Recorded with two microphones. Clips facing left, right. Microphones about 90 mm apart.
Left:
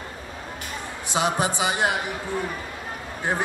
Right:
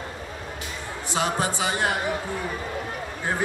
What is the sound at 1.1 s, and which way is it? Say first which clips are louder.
Speech: left 2 dB; 20° left (ahead or behind).